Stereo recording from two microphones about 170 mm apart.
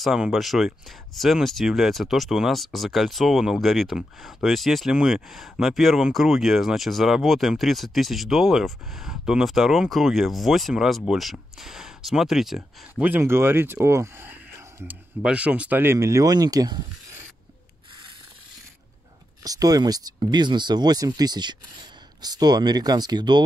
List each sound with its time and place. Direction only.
0.0 s speech: centre (ahead or behind); by 16.8 s 20° right (ahead or behind)
19.4 s speech: 20° right (ahead or behind)